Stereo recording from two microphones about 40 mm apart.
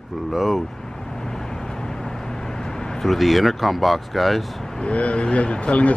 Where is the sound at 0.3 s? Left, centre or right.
Centre.